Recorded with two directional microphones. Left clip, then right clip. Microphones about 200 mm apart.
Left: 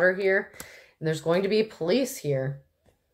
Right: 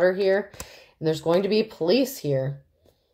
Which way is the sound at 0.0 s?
40° right (ahead or behind).